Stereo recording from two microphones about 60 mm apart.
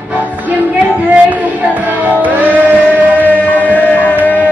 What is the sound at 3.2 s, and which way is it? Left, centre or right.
Music, left.